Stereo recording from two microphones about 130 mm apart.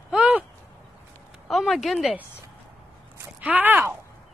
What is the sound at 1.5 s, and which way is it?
Speech, centre (ahead or behind).